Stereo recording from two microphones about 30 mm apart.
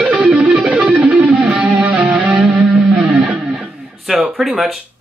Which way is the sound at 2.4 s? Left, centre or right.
Right.